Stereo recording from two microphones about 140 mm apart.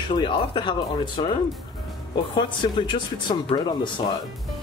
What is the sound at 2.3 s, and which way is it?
A man's voice, 35° left (ahead or behind).